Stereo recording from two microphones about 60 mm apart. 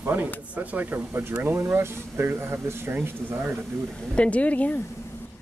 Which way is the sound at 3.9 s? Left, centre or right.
Centre.